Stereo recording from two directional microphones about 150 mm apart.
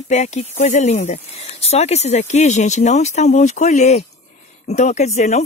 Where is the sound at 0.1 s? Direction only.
50° left (ahead or behind).